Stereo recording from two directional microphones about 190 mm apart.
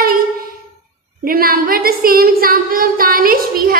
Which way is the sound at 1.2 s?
50° right (ahead or behind).